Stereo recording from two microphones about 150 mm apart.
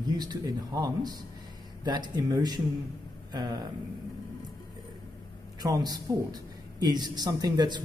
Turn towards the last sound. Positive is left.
turn(degrees=-30)  # may be behind; listen again after turning